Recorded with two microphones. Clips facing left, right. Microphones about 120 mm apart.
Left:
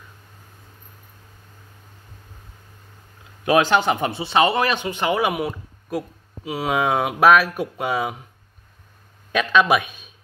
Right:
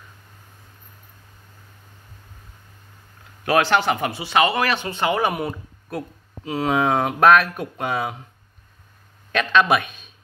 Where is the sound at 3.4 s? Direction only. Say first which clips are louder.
Left 1 dB; 15° left (ahead or behind).